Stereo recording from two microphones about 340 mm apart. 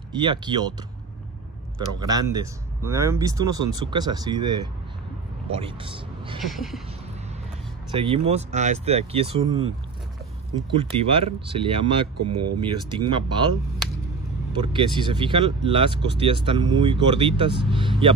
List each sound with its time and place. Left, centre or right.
0.1 s speech: centre
2.0 s speech: centre
6.4 s a sound: centre
7.9 s speech: centre
10.7 s speech: centre
12.3 s speech: right
12.5 s speech: centre
14.6 s speech: centre